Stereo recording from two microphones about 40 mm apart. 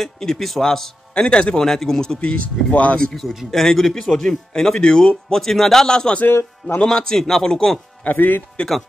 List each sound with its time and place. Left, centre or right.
0.0 s speech: centre
1.1 s speech: left
1.6 s speech: centre
2.1 s speech: left
3.1 s speech: centre
6.2 s a man's voice: left
6.8 s speech: centre
8.0 s speech: left